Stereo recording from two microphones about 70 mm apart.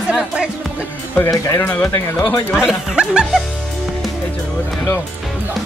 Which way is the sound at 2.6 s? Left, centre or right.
Centre.